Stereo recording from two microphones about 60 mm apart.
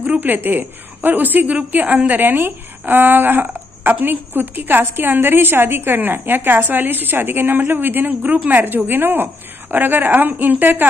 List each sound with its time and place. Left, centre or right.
0.0 s a woman's voice: right